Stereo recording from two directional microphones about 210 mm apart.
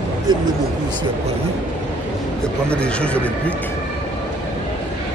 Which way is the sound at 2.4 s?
5° left (ahead or behind).